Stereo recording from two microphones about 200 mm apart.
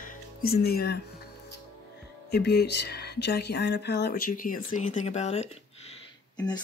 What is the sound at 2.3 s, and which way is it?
Speech, 55° left (ahead or behind).